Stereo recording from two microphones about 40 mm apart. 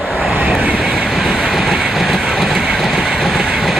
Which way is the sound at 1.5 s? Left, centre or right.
Centre.